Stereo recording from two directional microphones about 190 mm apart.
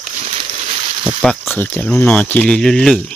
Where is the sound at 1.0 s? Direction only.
Centre (ahead or behind).